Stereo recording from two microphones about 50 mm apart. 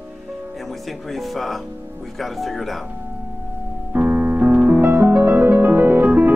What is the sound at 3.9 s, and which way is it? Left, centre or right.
Keyboard, right.